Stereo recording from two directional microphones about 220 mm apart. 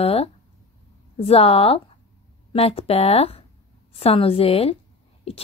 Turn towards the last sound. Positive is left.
turn(degrees=25)  # may be behind; listen again after turning